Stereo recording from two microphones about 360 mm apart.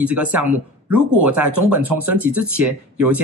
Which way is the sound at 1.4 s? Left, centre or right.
Right.